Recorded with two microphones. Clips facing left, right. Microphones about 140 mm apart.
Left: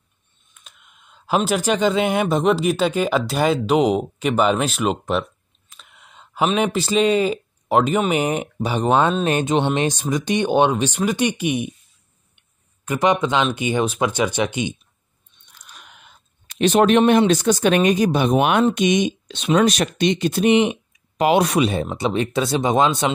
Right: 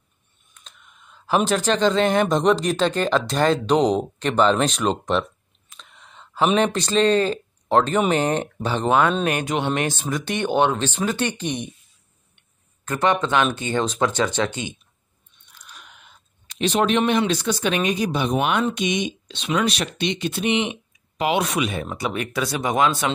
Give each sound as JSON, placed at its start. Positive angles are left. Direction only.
{"t": 0.6, "sound": "speech", "side_deg": 10}
{"t": 5.8, "sound": "a sound", "side_deg": 10}
{"t": 8.1, "sound": "speech", "side_deg": 10}
{"t": 9.2, "sound": "speech", "side_deg": 25}
{"t": 12.8, "sound": "speech", "side_deg": 15}
{"t": 15.6, "sound": "a sound", "side_deg": 50}
{"t": 17.3, "sound": "speech", "side_deg": 45}